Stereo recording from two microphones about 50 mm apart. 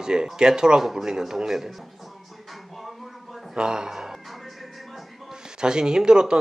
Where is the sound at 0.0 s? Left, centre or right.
Centre.